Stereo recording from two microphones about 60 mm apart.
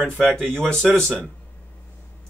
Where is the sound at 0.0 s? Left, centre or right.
Centre.